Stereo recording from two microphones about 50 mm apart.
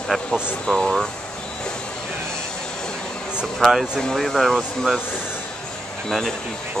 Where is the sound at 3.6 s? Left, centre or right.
Centre.